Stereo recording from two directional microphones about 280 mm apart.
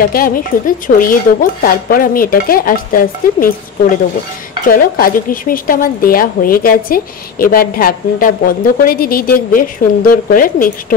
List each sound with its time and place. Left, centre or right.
0.1 s a woman's voice: left
4.6 s a woman's voice: left